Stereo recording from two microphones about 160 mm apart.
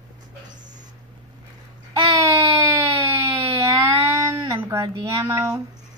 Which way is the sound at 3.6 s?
20° right (ahead or behind).